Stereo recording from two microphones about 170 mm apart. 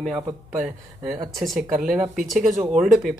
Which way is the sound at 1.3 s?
Centre (ahead or behind).